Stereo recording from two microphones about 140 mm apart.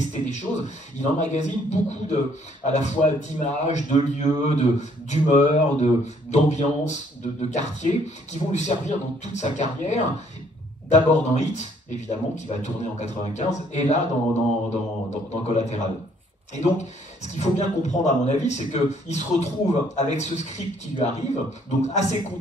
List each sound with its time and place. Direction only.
0.0 s speech: 55° left (ahead or behind)